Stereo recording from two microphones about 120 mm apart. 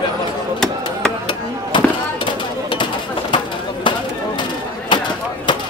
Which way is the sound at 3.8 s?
40° left (ahead or behind).